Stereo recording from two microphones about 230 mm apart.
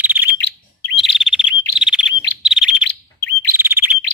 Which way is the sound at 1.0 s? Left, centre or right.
Centre.